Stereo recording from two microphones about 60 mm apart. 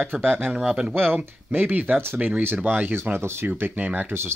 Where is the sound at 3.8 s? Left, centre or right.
Right.